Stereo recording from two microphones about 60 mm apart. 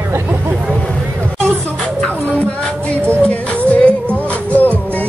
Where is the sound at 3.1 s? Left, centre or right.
Left.